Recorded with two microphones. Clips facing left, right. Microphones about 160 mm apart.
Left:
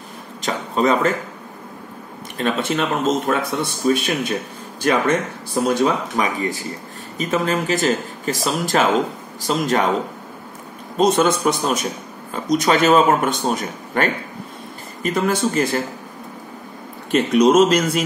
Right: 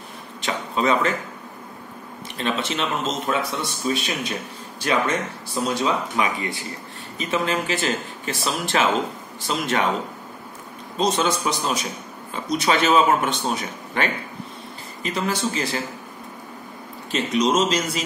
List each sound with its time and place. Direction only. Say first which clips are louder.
0.4 s a sound: left 4 dB; 40° left (ahead or behind)
2.3 s a man's voice: left 5 dB; 50° left (ahead or behind)
11.0 s a man's voice: left 6 dB; 50° left (ahead or behind)
17.1 s speech: left 7 dB; 55° left (ahead or behind)